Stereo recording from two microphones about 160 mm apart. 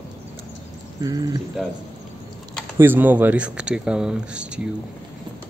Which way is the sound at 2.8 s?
10° right (ahead or behind).